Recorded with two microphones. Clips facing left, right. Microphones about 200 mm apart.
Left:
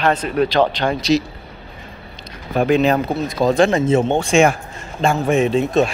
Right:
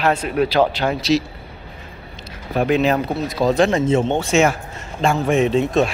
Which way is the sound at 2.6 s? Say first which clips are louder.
Left 2 dB; centre (ahead or behind).